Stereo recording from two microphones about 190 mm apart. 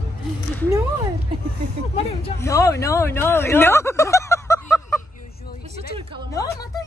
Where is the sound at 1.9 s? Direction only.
30° left (ahead or behind).